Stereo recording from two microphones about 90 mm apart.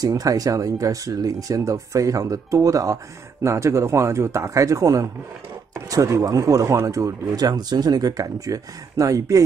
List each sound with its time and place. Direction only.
0.0 s speech: 40° right (ahead or behind)